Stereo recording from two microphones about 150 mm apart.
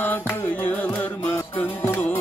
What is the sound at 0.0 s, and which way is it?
Music, 10° left (ahead or behind).